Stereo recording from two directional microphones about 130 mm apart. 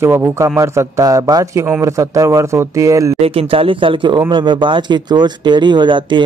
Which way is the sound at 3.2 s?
45° right (ahead or behind).